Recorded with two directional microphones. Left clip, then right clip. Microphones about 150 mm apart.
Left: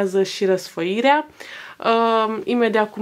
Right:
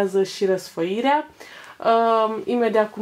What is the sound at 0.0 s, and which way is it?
Speech, 30° left (ahead or behind).